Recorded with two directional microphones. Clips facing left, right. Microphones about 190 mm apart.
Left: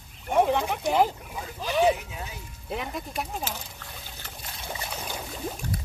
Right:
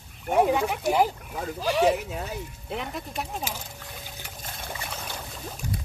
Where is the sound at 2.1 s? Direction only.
65° right (ahead or behind).